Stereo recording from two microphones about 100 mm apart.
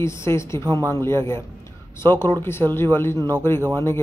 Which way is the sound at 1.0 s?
25° left (ahead or behind).